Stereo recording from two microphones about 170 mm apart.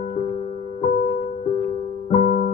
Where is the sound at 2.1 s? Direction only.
40° left (ahead or behind).